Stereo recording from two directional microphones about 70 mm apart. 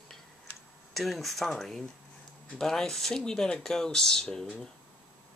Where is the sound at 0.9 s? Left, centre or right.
Centre.